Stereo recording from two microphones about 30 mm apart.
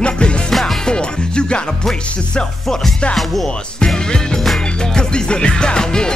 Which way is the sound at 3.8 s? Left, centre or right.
Centre.